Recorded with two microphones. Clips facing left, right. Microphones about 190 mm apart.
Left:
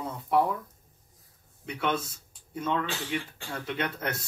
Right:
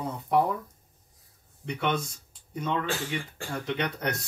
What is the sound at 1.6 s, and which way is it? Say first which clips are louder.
Speech: right 1 dB; 5° left (ahead or behind).